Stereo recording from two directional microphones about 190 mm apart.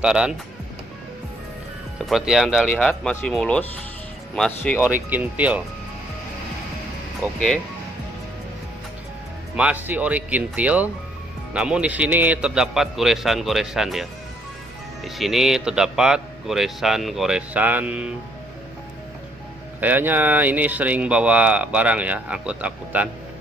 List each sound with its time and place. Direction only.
0.0 s speech: 5° right (ahead or behind)
2.0 s speech: 5° right (ahead or behind)
4.8 s speech: 10° right (ahead or behind)
7.3 s speech: 5° left (ahead or behind)
9.6 s speech: 10° right (ahead or behind)
15.0 s speech: centre (ahead or behind)
19.8 s speech: 10° right (ahead or behind)